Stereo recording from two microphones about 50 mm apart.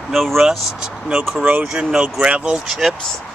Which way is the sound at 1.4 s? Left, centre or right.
Right.